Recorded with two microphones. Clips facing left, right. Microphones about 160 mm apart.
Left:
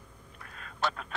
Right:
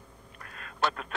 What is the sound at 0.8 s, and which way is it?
Speech, 60° right (ahead or behind).